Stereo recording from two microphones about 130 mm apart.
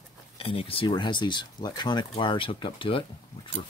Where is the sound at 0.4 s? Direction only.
45° left (ahead or behind).